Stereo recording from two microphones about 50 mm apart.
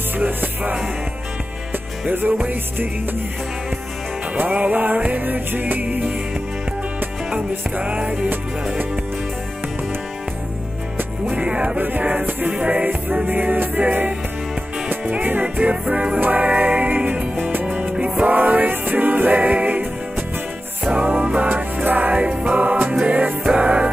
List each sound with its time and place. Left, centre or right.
0.2 s music: right
2.0 s music: right
4.4 s music: right
7.8 s music: right
11.3 s music: right
12.0 s music: right
12.5 s music: right
13.1 s music: right
17.7 s music: right
20.8 s music: right
22.1 s music: right